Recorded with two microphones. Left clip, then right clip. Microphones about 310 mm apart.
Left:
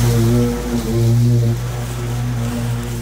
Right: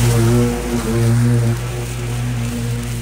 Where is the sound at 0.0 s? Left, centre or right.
Centre.